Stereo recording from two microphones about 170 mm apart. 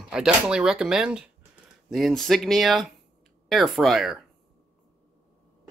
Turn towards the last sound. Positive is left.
turn(degrees=0)  # may be behind; listen again after turning